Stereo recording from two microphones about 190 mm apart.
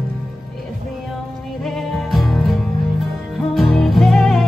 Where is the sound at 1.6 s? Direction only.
Centre (ahead or behind).